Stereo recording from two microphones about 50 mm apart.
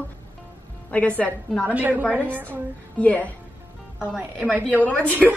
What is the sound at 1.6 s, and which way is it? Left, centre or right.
Speech, right.